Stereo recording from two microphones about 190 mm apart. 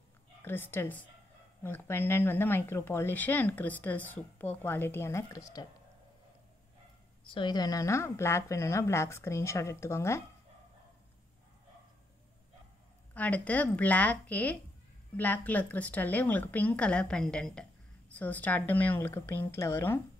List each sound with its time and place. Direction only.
0.4 s speech: 10° left (ahead or behind)
7.3 s speech: 20° left (ahead or behind)
13.1 s speech: 10° left (ahead or behind)